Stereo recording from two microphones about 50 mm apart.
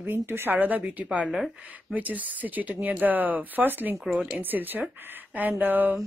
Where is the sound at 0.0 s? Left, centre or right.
Right.